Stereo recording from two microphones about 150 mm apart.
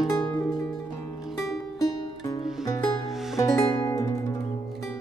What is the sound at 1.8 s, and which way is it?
Music, 25° left (ahead or behind).